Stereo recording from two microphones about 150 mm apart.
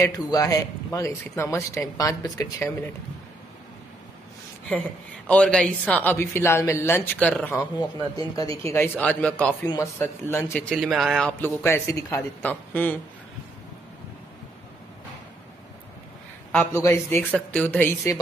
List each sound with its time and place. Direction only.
0.0 s speech: 25° left (ahead or behind)
4.6 s a woman's voice: 10° left (ahead or behind)
8.2 s speech: 25° left (ahead or behind)
8.7 s a woman's voice: 15° left (ahead or behind)
11.3 s a woman's voice: 15° left (ahead or behind)
16.5 s a woman's voice: 15° left (ahead or behind)